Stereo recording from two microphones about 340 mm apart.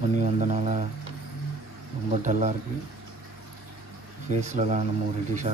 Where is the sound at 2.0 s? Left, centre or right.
Right.